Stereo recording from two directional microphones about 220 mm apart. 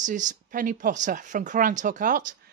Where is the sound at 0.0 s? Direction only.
35° right (ahead or behind).